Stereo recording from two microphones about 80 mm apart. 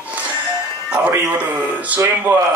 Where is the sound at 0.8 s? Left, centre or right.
Centre.